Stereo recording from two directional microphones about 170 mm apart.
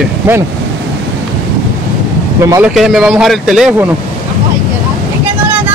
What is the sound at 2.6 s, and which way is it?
Speech, centre (ahead or behind).